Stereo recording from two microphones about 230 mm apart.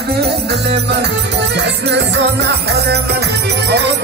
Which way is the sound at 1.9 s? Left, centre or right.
Right.